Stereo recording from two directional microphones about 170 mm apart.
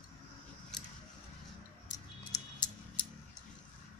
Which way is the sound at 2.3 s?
25° left (ahead or behind).